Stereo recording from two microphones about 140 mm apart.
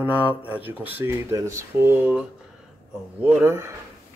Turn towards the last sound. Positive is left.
turn(degrees=-15)  # may be behind; listen again after turning